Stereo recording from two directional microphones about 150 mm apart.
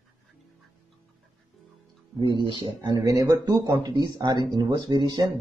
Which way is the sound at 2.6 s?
25° right (ahead or behind).